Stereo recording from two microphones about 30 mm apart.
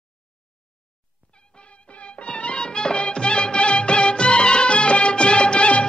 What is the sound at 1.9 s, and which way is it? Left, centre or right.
Music, left.